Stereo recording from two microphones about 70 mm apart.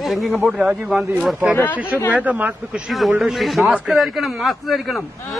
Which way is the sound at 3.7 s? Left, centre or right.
Centre.